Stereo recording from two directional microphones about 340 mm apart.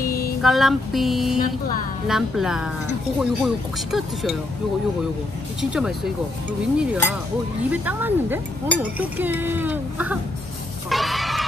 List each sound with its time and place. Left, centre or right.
0.0 s music: left
0.4 s speech: centre
5.6 s speech: centre
10.9 s a sound: centre